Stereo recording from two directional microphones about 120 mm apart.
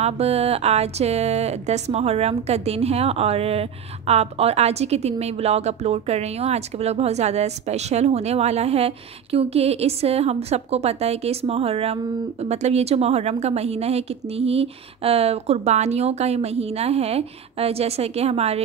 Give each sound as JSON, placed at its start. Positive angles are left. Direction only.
{"t": 0.0, "sound": "speech", "side_deg": -60}